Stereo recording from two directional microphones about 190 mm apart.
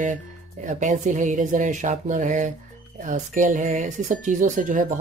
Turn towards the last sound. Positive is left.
turn(degrees=-45)  # may be behind; listen again after turning